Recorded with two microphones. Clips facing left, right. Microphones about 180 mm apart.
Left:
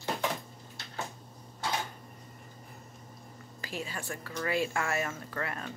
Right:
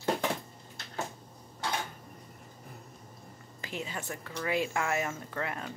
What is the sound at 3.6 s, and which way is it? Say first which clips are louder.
Speech: even; 20° right (ahead or behind).